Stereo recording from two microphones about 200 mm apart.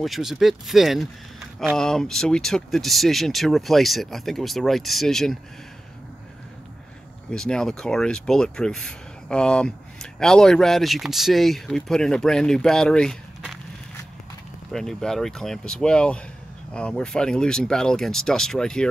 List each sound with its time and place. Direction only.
0.0 s speech: centre (ahead or behind)
7.2 s speech: 5° left (ahead or behind)
14.7 s speech: centre (ahead or behind)